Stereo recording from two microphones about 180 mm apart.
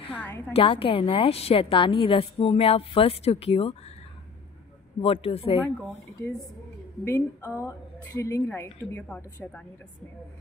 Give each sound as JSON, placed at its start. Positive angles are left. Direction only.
{"t": 0.5, "sound": "a woman's voice", "side_deg": 30}
{"t": 5.0, "sound": "a woman's voice", "side_deg": 30}
{"t": 7.1, "sound": "a woman's voice", "side_deg": 10}